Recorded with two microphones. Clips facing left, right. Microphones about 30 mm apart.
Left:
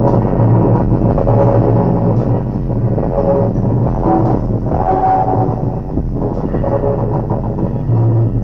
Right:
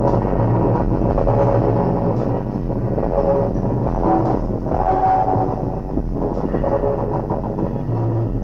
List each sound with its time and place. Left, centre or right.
0.0 s music: left
0.9 s vehicle: left
3.2 s music: left